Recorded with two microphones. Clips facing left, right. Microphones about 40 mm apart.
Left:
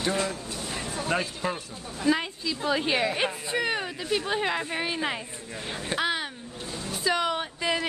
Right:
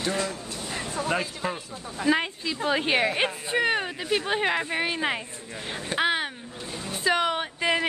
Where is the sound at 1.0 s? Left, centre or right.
Centre.